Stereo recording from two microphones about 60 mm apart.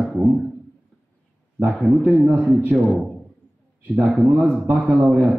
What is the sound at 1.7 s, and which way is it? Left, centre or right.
A man's voice, centre.